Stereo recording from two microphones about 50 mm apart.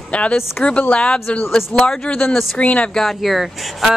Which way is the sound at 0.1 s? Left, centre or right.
Left.